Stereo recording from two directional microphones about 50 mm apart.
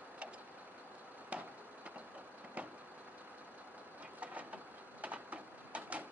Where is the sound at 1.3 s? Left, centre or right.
Right.